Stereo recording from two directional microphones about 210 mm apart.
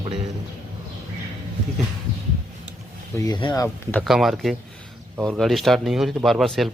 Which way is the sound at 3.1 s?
20° left (ahead or behind).